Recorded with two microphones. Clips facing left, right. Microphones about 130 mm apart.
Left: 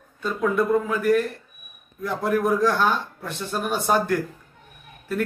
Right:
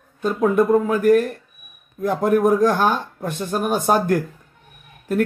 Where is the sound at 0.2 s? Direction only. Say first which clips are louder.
Right 5 dB; 45° right (ahead or behind).